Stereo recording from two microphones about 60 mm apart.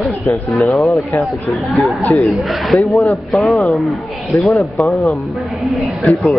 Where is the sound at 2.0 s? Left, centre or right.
Left.